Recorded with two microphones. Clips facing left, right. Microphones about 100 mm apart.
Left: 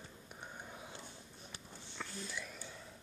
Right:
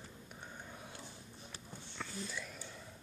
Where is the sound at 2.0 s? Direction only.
Centre (ahead or behind).